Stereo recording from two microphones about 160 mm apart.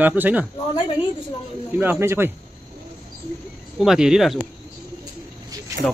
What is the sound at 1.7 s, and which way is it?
Speech, 15° right (ahead or behind).